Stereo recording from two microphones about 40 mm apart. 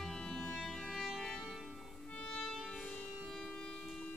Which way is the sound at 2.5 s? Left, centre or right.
Centre.